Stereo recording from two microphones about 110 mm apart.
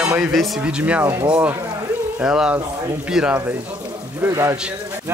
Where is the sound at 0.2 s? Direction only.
5° right (ahead or behind).